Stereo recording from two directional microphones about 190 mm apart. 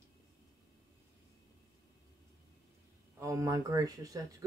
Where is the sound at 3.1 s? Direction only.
15° right (ahead or behind).